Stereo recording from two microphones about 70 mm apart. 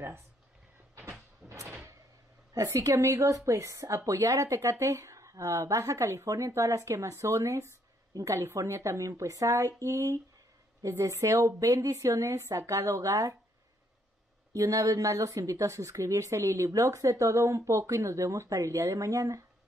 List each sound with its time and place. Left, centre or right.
2.5 s a woman's voice: right
8.1 s a woman's voice: right
8.4 s a woman's voice: right
14.5 s a woman's voice: right